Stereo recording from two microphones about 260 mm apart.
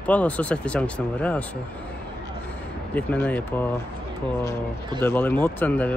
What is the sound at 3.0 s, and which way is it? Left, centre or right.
Speech, centre.